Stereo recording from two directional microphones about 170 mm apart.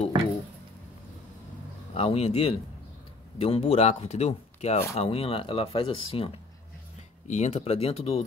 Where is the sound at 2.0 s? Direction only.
40° left (ahead or behind).